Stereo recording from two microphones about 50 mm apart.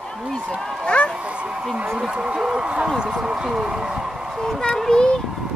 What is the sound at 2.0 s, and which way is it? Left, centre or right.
Speech, centre.